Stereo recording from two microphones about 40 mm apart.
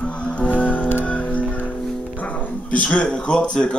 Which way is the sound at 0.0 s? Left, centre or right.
Left.